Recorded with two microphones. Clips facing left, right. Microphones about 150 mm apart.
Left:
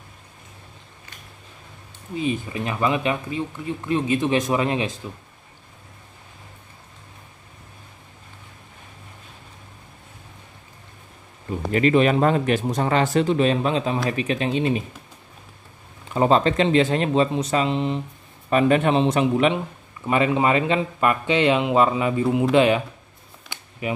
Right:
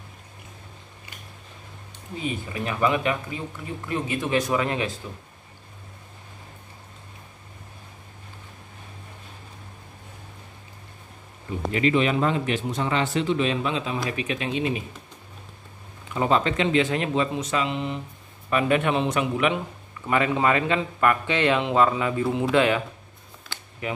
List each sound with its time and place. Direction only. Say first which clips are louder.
2.6 s speech: even; 20° left (ahead or behind)
11.7 s speech: left 4 dB; 45° left (ahead or behind)
16.1 s speech: left 4 dB; 35° left (ahead or behind)
20.1 s speech: left 2 dB; 20° left (ahead or behind)
23.5 s a sound: left 1 dB; 20° left (ahead or behind)